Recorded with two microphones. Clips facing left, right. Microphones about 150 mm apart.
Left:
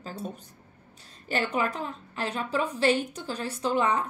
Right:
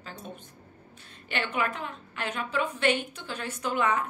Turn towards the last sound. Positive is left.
turn(degrees=30)  # may be behind; listen again after turning